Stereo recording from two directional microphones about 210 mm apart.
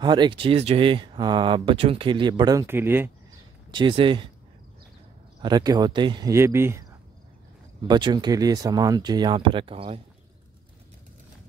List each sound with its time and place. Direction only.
0.0 s speech: 20° right (ahead or behind)
3.7 s speech: 25° right (ahead or behind)
5.4 s speech: 20° right (ahead or behind)